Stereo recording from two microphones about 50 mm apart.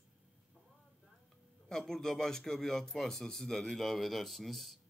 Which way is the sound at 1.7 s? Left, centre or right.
Centre.